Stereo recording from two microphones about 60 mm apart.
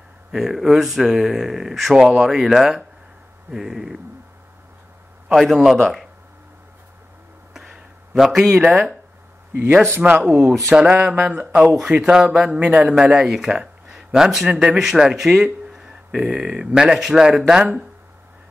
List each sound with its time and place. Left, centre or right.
0.3 s speech: centre
5.3 s speech: centre
7.5 s a sound: centre
9.8 s speech: right
10.8 s speech: centre